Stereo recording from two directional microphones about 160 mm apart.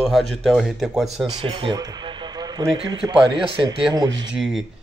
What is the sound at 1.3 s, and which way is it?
Speech, 35° right (ahead or behind).